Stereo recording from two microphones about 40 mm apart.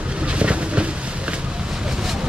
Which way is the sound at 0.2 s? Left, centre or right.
Right.